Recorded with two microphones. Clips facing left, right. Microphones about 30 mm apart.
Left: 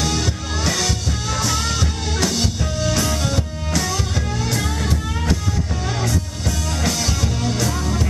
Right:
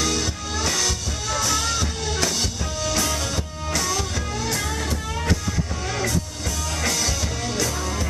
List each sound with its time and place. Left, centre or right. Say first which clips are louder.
0.0 s music: left 2 dB; centre
5.9 s music: left 2 dB; centre